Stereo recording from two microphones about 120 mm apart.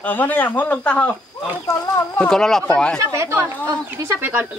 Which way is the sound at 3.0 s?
25° right (ahead or behind).